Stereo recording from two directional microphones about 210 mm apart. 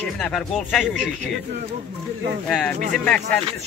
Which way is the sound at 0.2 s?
Centre (ahead or behind).